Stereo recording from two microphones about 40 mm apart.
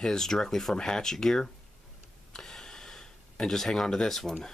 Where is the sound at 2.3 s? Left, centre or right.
Centre.